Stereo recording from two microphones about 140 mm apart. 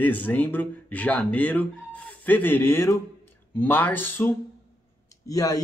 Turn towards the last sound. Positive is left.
turn(degrees=25)  # may be behind; listen again after turning